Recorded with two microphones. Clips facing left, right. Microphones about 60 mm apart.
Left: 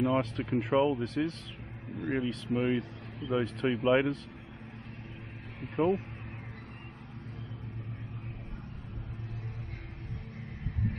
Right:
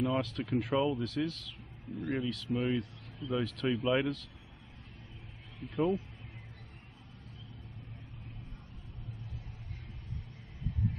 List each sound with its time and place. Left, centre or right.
0.0 s speech: left
5.6 s speech: left